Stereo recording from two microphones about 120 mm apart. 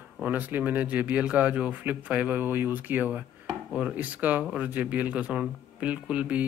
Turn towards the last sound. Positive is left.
turn(degrees=-10)  # may be behind; listen again after turning